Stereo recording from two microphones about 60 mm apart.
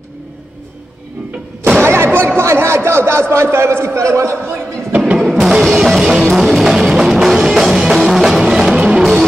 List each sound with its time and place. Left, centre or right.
1.8 s a sound: right
2.1 s a man's voice: right
4.9 s music: right
5.2 s music: centre